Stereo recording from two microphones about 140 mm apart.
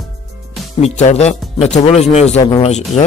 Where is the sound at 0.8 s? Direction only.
55° left (ahead or behind).